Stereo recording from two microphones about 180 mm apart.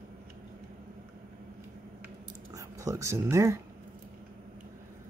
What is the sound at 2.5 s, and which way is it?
Speech, 20° right (ahead or behind).